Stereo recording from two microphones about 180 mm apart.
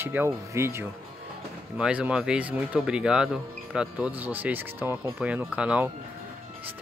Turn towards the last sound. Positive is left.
turn(degrees=-5)  # may be behind; listen again after turning